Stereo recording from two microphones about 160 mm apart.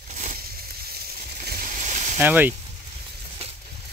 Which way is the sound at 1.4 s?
60° right (ahead or behind).